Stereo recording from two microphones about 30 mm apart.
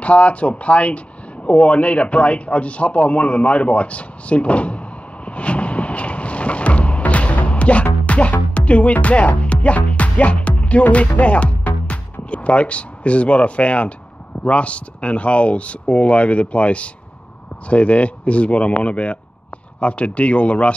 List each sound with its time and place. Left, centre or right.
0.0 s a sound: left
8.1 s music: left
14.4 s speech: left